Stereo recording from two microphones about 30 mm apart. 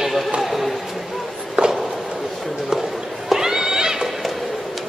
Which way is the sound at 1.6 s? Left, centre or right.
Right.